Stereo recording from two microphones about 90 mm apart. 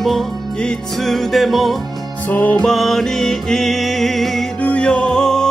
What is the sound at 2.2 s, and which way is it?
Music, 20° left (ahead or behind).